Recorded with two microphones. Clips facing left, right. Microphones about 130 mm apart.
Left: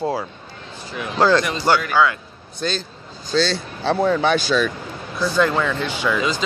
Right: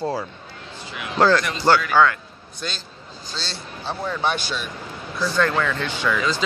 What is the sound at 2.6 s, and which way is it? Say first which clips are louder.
Speech: left 8 dB; 35° left (ahead or behind).